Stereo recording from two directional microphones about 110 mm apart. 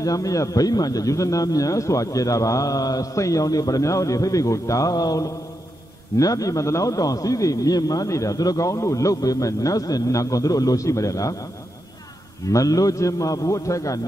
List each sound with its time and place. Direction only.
0.0 s a man's voice: 30° left (ahead or behind)
12.4 s a man's voice: 30° left (ahead or behind)